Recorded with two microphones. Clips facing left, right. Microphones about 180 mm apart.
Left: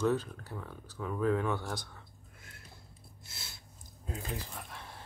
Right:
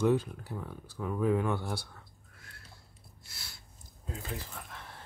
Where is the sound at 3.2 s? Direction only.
20° left (ahead or behind).